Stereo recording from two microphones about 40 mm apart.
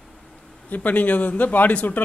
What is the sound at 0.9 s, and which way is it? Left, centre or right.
A man's voice, left.